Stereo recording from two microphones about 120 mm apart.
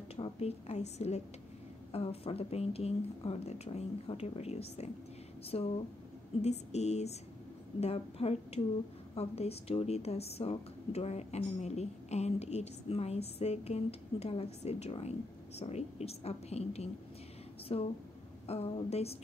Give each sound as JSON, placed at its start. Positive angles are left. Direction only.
{"t": 0.1, "sound": "speech", "side_deg": 55}
{"t": 1.9, "sound": "speech", "side_deg": 55}